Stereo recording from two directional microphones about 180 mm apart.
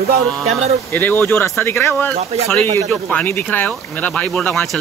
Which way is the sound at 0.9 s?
10° left (ahead or behind).